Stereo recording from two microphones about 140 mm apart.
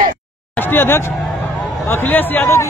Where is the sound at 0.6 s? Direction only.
15° left (ahead or behind).